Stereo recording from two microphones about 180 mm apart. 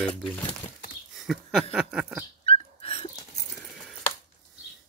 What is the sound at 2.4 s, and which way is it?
Dog, 30° left (ahead or behind).